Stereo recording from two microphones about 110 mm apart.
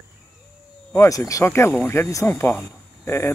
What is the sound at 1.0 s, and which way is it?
Speech, 30° left (ahead or behind).